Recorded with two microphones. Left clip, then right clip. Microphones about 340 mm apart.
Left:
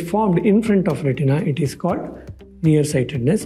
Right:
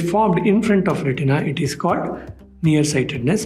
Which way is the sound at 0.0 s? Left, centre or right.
Left.